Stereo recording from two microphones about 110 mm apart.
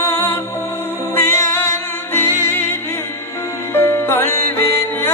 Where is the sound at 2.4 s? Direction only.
20° left (ahead or behind).